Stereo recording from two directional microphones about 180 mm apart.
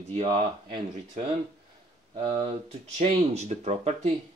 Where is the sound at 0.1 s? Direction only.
30° right (ahead or behind).